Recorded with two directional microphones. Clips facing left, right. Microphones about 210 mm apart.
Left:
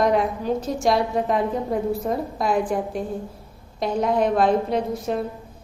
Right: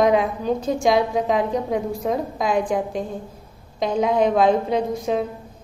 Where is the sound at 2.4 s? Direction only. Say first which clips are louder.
Even; 90° right.